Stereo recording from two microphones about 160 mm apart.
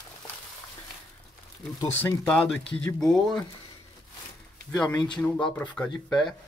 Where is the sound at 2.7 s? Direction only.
5° left (ahead or behind).